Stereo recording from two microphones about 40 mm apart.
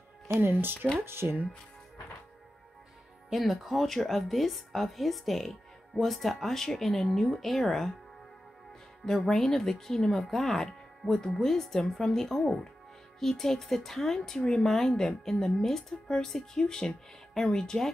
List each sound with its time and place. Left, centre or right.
0.4 s speech: right
0.9 s speech: right
3.3 s speech: centre
9.3 s speech: centre